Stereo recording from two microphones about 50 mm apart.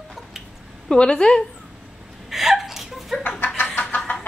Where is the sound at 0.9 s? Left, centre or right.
Centre.